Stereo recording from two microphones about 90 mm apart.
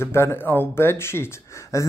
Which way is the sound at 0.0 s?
30° left (ahead or behind).